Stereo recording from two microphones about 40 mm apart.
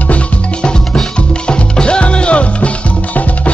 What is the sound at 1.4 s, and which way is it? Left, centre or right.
Music, left.